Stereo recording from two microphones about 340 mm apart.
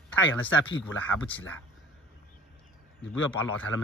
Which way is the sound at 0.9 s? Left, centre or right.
Centre.